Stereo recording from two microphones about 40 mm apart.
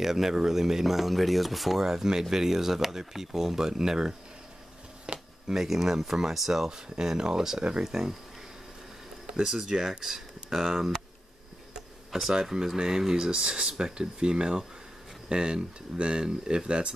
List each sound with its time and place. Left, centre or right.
0.0 s speech: centre
1.8 s speech: centre
9.3 s speech: centre
12.1 s speech: centre
12.7 s speech: centre